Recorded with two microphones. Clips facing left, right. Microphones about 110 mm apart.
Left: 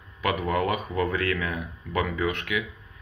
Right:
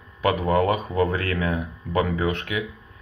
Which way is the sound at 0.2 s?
35° right (ahead or behind).